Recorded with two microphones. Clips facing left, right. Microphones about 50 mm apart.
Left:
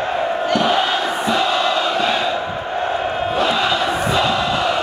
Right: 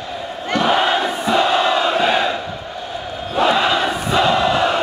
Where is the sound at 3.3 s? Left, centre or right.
Centre.